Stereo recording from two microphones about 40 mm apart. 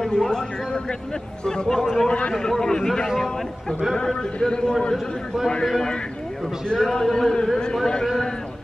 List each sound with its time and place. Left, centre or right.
0.1 s a sound: centre
1.4 s a man's voice: centre
2.0 s a man's voice: left
2.6 s a man's voice: centre
6.7 s a man's voice: centre